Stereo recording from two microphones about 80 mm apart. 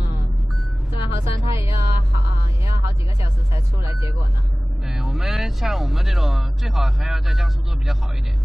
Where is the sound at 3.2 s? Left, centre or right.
Right.